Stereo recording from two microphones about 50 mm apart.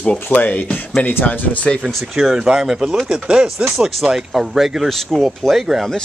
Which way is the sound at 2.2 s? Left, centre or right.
Centre.